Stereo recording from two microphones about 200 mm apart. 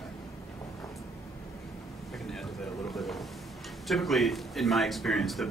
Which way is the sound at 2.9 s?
Centre (ahead or behind).